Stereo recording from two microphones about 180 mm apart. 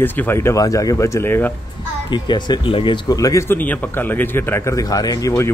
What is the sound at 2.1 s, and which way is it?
Speech, 25° left (ahead or behind).